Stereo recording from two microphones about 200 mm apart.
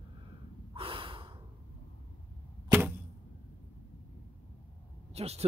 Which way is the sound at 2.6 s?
10° right (ahead or behind).